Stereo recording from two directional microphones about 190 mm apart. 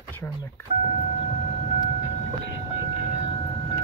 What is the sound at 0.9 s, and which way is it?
Vehicle, 30° left (ahead or behind).